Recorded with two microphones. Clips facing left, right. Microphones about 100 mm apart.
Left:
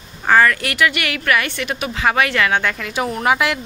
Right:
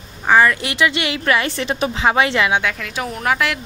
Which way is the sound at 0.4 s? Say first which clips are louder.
Even; 20° right (ahead or behind).